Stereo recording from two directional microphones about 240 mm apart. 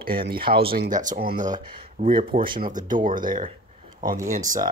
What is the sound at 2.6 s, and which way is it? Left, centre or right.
Speech, right.